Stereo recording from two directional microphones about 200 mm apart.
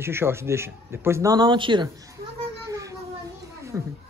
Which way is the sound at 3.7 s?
15° right (ahead or behind).